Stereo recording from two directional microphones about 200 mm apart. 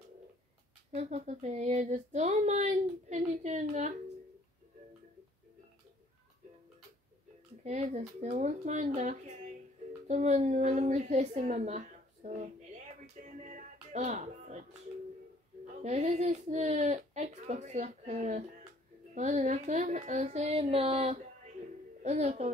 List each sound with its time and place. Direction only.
0.9 s speech: 35° right (ahead or behind)
7.6 s speech: 35° right (ahead or behind)
13.4 s music: 35° right (ahead or behind)
15.8 s speech: 35° right (ahead or behind)